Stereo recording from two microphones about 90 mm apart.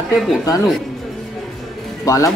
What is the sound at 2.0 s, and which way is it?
Speech, 35° left (ahead or behind).